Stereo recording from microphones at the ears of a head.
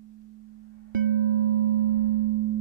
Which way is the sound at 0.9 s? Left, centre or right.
Right.